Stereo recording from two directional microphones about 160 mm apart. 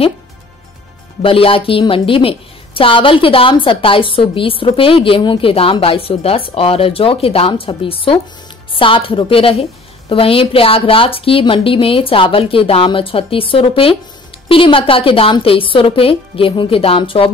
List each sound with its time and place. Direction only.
1.2 s a woman's voice: 35° left (ahead or behind)